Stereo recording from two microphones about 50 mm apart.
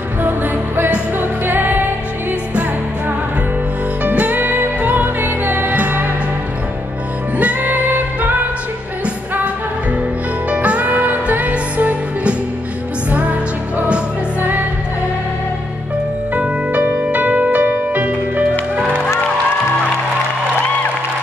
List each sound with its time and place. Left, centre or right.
1.4 s music: right
4.0 s music: right
7.3 s music: right
10.5 s music: right
16.3 s music: right